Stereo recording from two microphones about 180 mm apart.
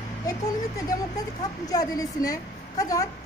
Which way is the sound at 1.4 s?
20° left (ahead or behind).